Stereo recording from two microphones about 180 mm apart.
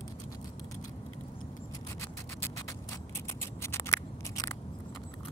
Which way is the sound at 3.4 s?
15° left (ahead or behind).